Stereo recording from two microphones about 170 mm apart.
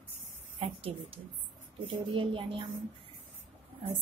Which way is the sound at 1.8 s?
30° right (ahead or behind).